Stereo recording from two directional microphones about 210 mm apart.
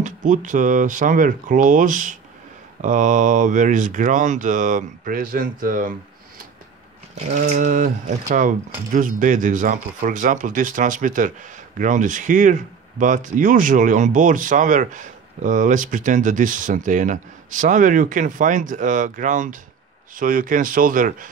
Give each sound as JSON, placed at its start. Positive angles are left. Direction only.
{"t": 0.0, "sound": "speech", "side_deg": -35}